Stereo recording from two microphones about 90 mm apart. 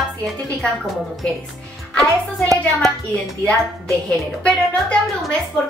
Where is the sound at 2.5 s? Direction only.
Centre (ahead or behind).